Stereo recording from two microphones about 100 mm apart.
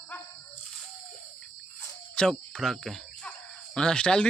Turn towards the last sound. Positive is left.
turn(degrees=10)  # may be behind; listen again after turning